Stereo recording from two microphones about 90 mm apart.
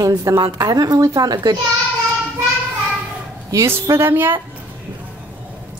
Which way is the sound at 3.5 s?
30° right (ahead or behind).